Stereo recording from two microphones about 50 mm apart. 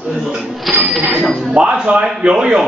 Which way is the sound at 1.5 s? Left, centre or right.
Right.